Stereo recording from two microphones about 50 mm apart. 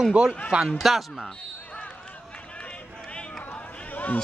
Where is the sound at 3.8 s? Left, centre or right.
Left.